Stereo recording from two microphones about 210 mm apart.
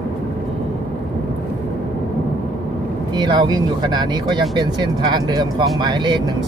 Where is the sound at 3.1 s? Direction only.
20° right (ahead or behind).